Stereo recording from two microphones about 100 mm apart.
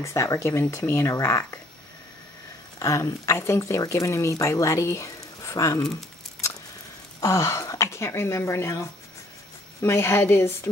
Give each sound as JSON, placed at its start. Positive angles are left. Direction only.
{"t": 0.0, "sound": "a woman's voice", "side_deg": 30}
{"t": 2.8, "sound": "speech", "side_deg": 30}
{"t": 7.2, "sound": "a woman's voice", "side_deg": 30}